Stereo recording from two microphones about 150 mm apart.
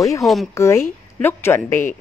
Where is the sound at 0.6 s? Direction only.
15° left (ahead or behind).